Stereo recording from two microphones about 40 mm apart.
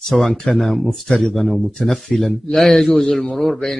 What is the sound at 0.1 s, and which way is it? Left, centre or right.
A man's voice, centre.